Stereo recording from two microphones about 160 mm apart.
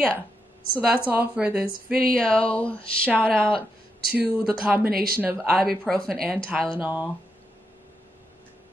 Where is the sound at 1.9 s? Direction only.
65° right (ahead or behind).